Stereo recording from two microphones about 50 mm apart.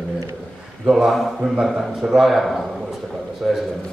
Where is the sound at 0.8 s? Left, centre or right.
Centre.